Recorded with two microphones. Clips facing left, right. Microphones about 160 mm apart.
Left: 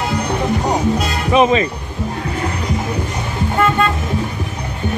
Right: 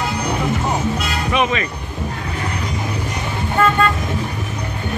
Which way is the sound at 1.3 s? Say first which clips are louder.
Left 7 dB; 35° left (ahead or behind).